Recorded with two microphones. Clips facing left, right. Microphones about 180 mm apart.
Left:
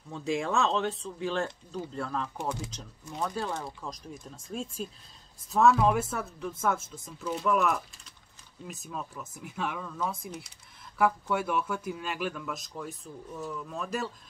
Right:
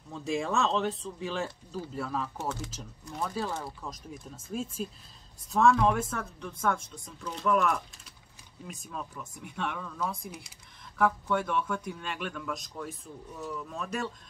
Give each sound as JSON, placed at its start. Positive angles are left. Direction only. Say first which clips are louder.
{"t": 0.1, "sound": "a man's voice", "louder": "left 1 dB", "side_deg": 0}
{"t": 2.3, "sound": "speech", "louder": "left 1 dB", "side_deg": 15}
{"t": 3.2, "sound": "a man's voice", "louder": "left 1 dB", "side_deg": 0}